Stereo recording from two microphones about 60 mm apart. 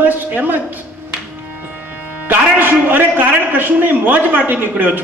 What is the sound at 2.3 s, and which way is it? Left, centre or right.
A man's voice, right.